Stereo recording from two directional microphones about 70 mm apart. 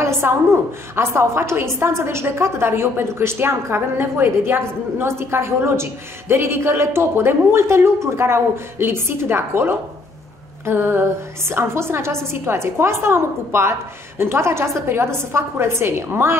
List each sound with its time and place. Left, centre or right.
0.0 s a woman's voice: right